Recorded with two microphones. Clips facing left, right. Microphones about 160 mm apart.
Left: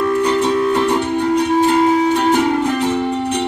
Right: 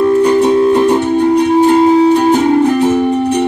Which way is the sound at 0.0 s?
30° right (ahead or behind).